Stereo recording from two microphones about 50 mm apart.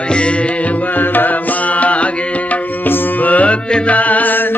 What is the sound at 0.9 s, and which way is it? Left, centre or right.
Tabla, left.